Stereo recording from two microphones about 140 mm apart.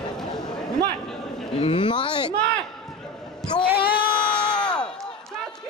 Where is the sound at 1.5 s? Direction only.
35° left (ahead or behind).